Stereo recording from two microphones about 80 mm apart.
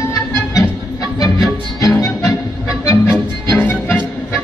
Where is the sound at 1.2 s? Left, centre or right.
Left.